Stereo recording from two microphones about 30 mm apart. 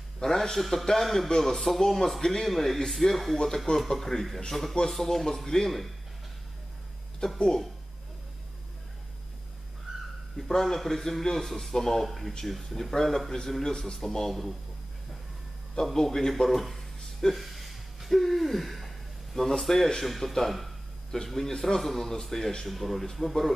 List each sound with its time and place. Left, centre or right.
0.2 s a man's voice: centre
7.2 s speech: left
10.6 s a man's voice: centre
15.7 s a man's voice: centre
16.4 s a sound: centre
19.6 s a man's voice: centre
21.3 s a man's voice: centre